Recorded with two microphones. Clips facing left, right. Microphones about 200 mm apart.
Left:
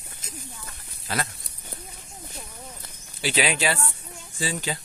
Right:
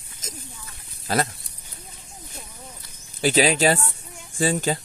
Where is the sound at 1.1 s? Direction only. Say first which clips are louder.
Right 6 dB; 40° right (ahead or behind).